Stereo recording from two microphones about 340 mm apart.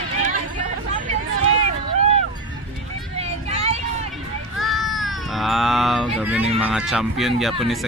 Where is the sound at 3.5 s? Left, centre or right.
Centre.